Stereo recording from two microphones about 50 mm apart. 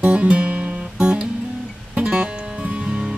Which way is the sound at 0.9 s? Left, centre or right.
Centre.